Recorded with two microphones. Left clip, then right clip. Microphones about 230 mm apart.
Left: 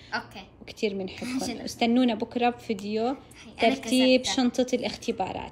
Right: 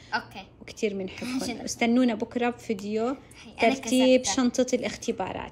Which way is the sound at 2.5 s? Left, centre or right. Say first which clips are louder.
Even; centre.